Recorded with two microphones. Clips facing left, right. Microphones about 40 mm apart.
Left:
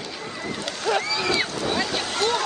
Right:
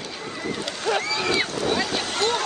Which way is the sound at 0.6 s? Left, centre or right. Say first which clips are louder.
Left 1 dB; right.